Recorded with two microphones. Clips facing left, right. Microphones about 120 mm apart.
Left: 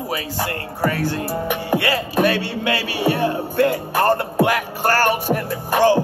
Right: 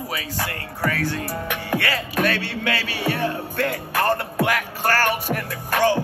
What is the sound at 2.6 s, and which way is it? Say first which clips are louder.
Music: left 5 dB; 40° left (ahead or behind).